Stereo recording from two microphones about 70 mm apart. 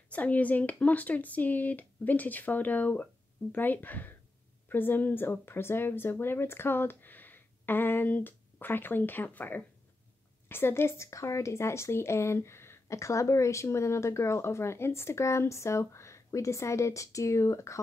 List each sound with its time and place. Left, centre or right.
0.1 s speech: left